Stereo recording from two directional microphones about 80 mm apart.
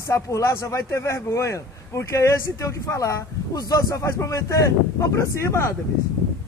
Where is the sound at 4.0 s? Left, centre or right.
Left.